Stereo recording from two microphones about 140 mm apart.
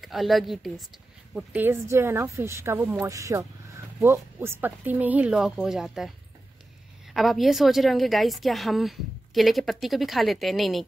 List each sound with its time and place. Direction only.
0.0 s a woman's voice: centre (ahead or behind)
1.3 s speech: 10° right (ahead or behind)
7.2 s a woman's voice: centre (ahead or behind)